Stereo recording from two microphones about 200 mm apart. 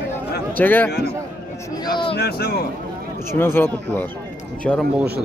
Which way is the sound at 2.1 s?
50° left (ahead or behind).